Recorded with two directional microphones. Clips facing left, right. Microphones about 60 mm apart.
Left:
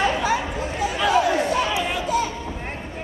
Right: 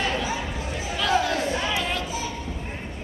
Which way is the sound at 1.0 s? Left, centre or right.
Centre.